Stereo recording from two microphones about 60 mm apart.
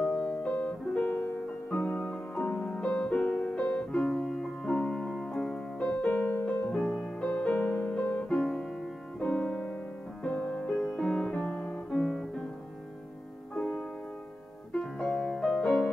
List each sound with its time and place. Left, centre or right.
0.0 s piano: centre
1.8 s music: left; by 5.6 s centre
5.8 s music: centre
6.0 s music: left
6.7 s music: centre
7.5 s music: left
8.4 s music: centre
9.2 s piano: centre
10.2 s music: left
14.7 s music: centre